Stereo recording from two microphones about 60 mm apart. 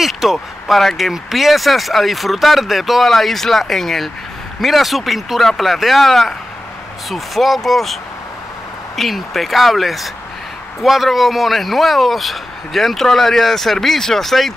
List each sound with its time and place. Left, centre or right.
0.0 s speech: centre